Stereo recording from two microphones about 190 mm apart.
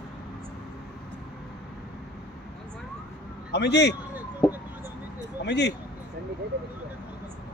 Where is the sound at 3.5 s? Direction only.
65° left (ahead or behind).